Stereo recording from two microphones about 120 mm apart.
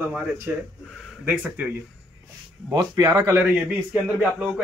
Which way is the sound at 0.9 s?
Centre (ahead or behind).